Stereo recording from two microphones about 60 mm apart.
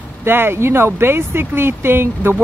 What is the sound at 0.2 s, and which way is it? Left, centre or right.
Speech, right.